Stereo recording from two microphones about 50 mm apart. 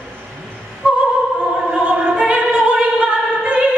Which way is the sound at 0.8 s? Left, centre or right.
Right.